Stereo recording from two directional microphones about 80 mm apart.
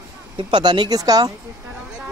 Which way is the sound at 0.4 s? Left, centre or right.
Right.